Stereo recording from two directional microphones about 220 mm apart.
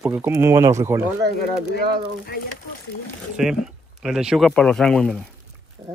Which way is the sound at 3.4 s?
5° right (ahead or behind).